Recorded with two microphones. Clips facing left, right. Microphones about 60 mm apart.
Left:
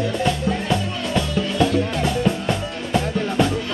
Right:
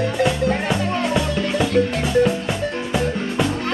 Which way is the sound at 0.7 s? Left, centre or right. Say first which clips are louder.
Right 2 dB; centre.